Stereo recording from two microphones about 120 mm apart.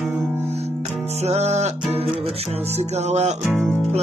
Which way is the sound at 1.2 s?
70° right (ahead or behind).